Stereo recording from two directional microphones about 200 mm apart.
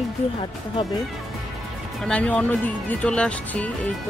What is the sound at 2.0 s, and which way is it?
Speech, 5° left (ahead or behind).